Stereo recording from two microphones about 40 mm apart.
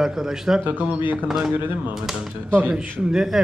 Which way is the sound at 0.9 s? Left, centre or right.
Right.